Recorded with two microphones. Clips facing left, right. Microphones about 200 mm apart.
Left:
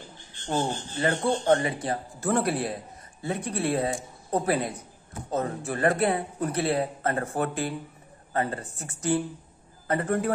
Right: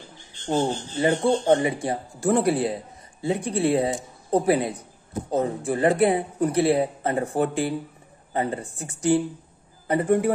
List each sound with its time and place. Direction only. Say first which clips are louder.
0.6 s a man's voice: right 4 dB; 20° right (ahead or behind)
5.6 s speech: right 3 dB; 25° right (ahead or behind)
5.9 s speech: right 5 dB; 15° right (ahead or behind)